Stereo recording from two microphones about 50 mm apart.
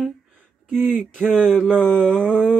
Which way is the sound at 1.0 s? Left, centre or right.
Centre.